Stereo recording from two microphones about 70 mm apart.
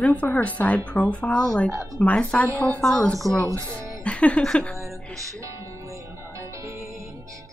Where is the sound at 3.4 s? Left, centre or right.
Right.